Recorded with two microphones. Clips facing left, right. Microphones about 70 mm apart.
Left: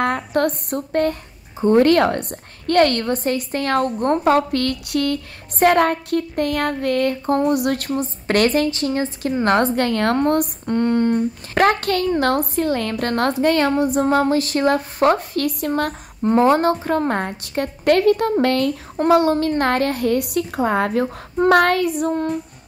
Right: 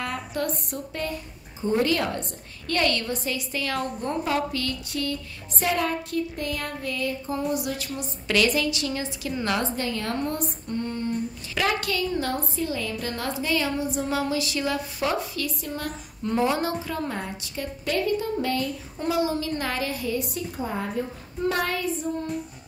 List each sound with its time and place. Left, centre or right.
0.0 s speech: left
16.3 s a woman's voice: left